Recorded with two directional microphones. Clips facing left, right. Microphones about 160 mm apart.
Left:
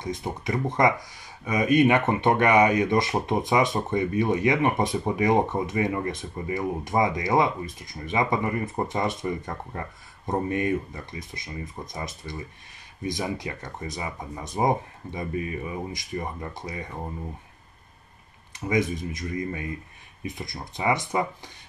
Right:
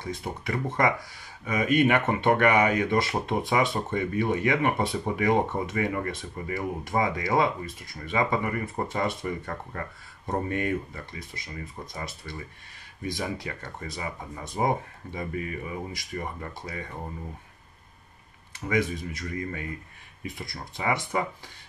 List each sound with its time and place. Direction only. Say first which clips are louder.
0.0 s speech: left 3 dB; 20° left (ahead or behind)
18.7 s speech: left 2 dB; 20° left (ahead or behind)